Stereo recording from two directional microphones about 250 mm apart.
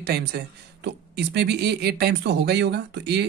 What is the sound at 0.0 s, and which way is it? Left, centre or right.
Speech, right.